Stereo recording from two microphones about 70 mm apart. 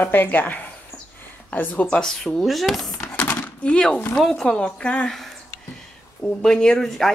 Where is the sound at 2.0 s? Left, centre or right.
Centre.